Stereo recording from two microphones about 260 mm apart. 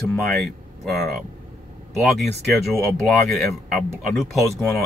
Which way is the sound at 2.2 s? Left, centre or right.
Right.